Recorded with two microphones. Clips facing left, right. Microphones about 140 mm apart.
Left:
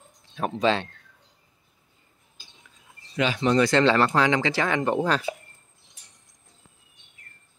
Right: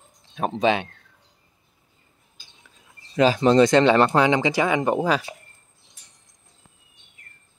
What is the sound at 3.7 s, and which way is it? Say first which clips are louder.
Speech: right 4 dB; 20° right (ahead or behind).